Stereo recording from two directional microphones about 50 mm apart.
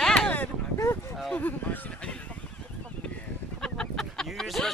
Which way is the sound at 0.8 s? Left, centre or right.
Left.